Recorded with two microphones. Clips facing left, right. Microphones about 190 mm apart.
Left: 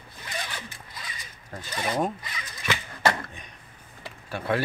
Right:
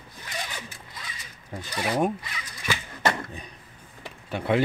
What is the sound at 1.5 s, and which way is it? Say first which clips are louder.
Speech: right 2 dB; 10° right (ahead or behind).